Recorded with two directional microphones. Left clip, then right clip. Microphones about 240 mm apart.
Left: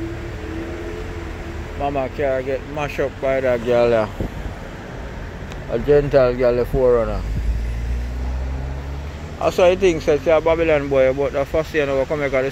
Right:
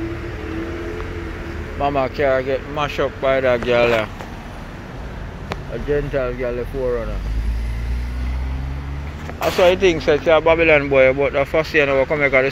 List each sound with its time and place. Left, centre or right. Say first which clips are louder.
1.8 s speech: right 3 dB; centre
2.8 s speech: right 2 dB; centre
3.6 s speech: even; left
5.9 s speech: left 7 dB; left
9.6 s speech: right 1 dB; centre